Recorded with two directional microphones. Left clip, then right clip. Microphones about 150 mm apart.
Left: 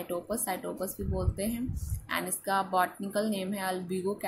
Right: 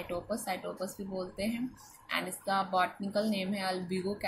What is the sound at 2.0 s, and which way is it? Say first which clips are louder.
Speech: left 1 dB; 35° left (ahead or behind).